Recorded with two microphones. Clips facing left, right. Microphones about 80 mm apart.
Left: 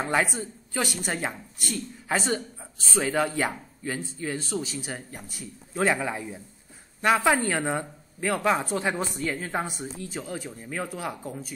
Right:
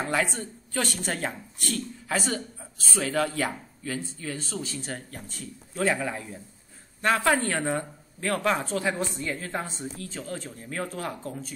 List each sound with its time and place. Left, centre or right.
0.0 s speech: left
0.3 s speech: centre
2.0 s speech: left